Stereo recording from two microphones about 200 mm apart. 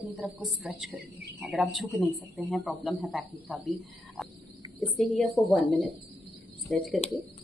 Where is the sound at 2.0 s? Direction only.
5° left (ahead or behind).